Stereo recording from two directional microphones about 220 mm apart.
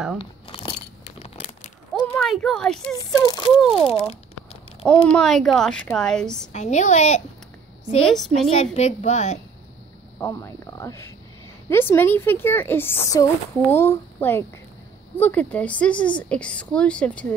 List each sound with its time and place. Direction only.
0.2 s crumpling: 25° left (ahead or behind)
2.1 s speech: centre (ahead or behind)
3.2 s speech: 15° left (ahead or behind)
3.6 s a woman's voice: centre (ahead or behind)
6.5 s a woman's voice: 30° left (ahead or behind)
8.3 s a woman's voice: 30° left (ahead or behind)
10.1 s a woman's voice: 10° left (ahead or behind)